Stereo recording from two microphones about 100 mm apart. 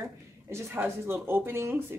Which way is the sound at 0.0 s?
30° right (ahead or behind).